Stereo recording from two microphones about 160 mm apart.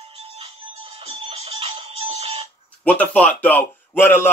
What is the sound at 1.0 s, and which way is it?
Music, 40° right (ahead or behind).